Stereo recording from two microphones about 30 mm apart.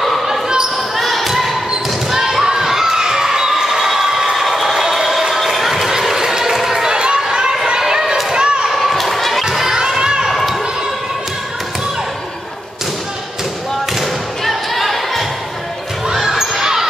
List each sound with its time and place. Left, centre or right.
0.9 s basketball bounce: centre
2.5 s children shouting: centre
4.5 s a sound: centre
5.8 s run: centre
6.5 s a sound: centre
6.9 s a sound: right
8.3 s basketball bounce: right
8.7 s crowd: centre
9.4 s crowd: centre
9.8 s children shouting: right
10.3 s basketball bounce: centre
13.9 s thump: centre
16.2 s basketball bounce: centre